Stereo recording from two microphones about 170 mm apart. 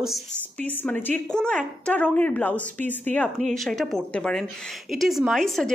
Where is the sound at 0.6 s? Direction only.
10° left (ahead or behind).